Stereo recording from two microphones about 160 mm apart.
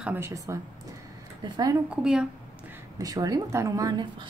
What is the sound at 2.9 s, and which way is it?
Speech, 20° right (ahead or behind).